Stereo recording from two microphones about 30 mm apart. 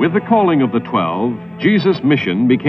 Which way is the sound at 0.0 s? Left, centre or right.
Centre.